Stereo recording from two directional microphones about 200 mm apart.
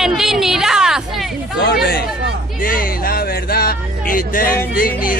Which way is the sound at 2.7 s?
50° left (ahead or behind).